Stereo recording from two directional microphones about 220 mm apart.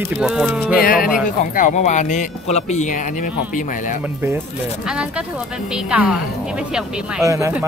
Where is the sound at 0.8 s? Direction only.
40° left (ahead or behind).